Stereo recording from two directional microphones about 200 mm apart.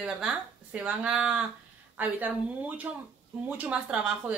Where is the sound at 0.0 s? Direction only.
5° right (ahead or behind).